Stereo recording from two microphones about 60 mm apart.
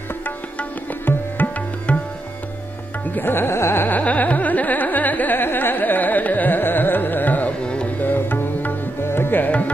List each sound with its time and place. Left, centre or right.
1.4 s music: left
1.9 s tabla: left
3.2 s carnatic music: left
4.0 s carnatic music: left
7.6 s music: centre
8.0 s music: left